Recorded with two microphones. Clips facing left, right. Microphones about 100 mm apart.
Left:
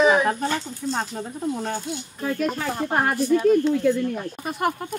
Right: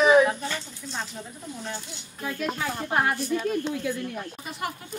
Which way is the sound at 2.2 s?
45° left (ahead or behind).